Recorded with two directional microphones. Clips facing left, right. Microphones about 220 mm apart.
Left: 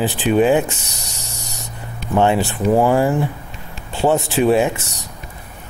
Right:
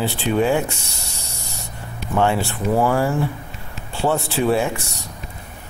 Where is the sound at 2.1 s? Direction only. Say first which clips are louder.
Left 3 dB; 20° left (ahead or behind).